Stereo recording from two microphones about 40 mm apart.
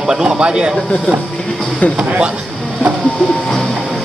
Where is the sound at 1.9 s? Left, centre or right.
Right.